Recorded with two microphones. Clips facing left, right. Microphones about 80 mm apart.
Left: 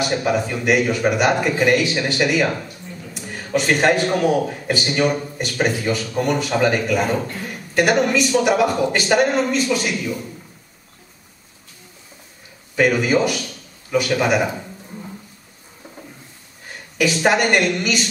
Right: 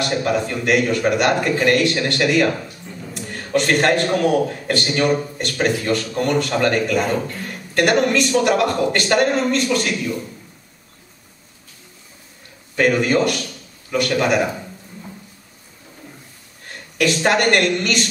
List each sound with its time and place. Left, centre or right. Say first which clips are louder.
0.0 s a man's voice: even; centre
12.7 s a man's voice: even; centre
16.6 s speech: right 1 dB; centre